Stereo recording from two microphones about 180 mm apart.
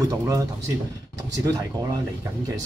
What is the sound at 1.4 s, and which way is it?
Speech, 20° right (ahead or behind).